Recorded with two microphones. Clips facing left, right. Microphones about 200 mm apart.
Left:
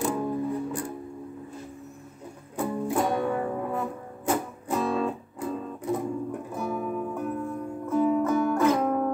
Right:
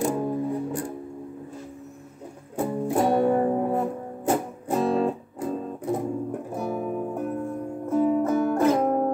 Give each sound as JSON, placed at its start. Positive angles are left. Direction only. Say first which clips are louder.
{"t": 0.0, "sound": "music", "louder": "right 2 dB", "side_deg": -35}
{"t": 2.6, "sound": "music", "louder": "right 3 dB", "side_deg": -30}